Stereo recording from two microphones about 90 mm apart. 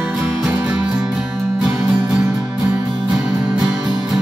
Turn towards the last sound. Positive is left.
turn(degrees=-5)  # may be behind; listen again after turning